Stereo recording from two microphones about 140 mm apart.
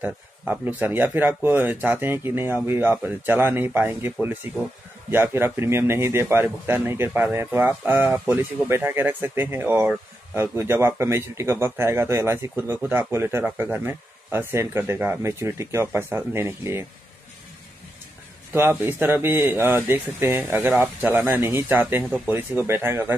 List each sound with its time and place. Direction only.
0.0 s speech: 15° right (ahead or behind)
18.5 s speech: 15° right (ahead or behind)